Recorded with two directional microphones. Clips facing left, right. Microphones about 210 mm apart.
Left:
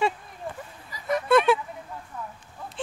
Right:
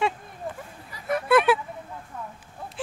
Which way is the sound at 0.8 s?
55° right (ahead or behind).